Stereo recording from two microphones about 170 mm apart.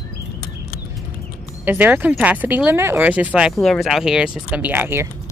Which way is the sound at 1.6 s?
10° right (ahead or behind).